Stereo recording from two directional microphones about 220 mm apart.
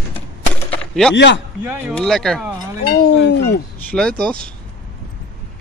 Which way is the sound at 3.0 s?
50° left (ahead or behind).